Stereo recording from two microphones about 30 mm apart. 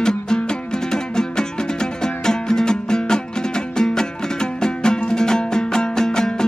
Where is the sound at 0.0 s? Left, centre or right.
Left.